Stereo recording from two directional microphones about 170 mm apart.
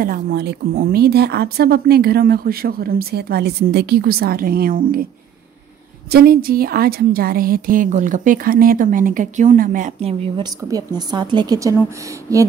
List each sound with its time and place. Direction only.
0.0 s speech: 65° right (ahead or behind)
6.1 s a woman's voice: 65° right (ahead or behind); by 12.4 s 20° right (ahead or behind)